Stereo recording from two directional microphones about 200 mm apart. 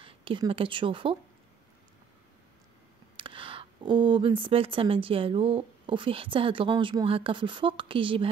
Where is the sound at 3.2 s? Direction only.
25° right (ahead or behind).